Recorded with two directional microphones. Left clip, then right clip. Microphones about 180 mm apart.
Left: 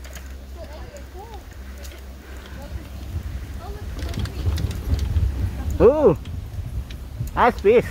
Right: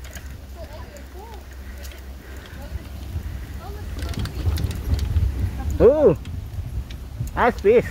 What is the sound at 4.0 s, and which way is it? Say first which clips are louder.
Vehicle: right 1 dB; 60° right (ahead or behind).